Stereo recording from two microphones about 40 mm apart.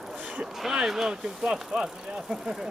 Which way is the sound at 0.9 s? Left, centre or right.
Centre.